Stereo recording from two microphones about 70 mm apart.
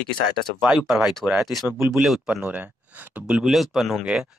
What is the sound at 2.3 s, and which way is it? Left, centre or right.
Speech, right.